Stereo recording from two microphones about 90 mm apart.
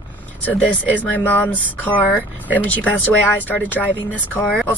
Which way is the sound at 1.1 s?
20° left (ahead or behind).